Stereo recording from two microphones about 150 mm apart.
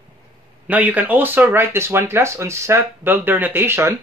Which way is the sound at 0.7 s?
10° right (ahead or behind).